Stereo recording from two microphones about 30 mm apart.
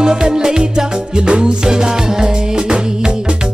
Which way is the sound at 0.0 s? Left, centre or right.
Right.